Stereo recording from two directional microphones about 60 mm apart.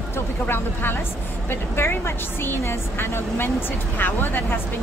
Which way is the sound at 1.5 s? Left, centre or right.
Left.